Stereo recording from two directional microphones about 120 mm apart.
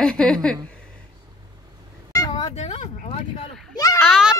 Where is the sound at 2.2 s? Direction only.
35° left (ahead or behind).